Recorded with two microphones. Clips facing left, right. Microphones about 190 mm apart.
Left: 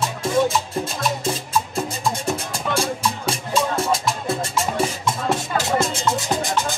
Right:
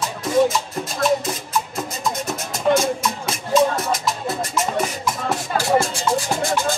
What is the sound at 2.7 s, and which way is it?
Music, 30° left (ahead or behind).